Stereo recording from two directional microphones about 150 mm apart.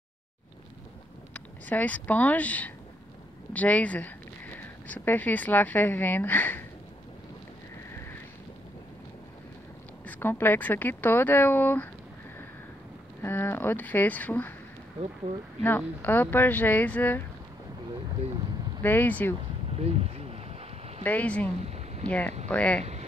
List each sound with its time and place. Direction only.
1.3 s speech: 10° left (ahead or behind)
10.0 s speech: 10° left (ahead or behind)
13.2 s speech: 15° left (ahead or behind)
15.3 s speech: 50° right (ahead or behind)
15.6 s speech: 10° left (ahead or behind)
18.8 s speech: 15° left (ahead or behind)
19.7 s boat: 45° right (ahead or behind)
21.0 s speech: 10° left (ahead or behind)
21.6 s a sound: 45° right (ahead or behind)
22.0 s speech: 10° left (ahead or behind)